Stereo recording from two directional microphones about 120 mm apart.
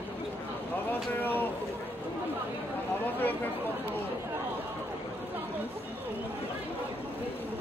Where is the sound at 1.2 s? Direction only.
15° left (ahead or behind).